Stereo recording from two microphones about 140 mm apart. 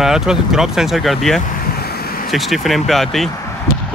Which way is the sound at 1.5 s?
90° left.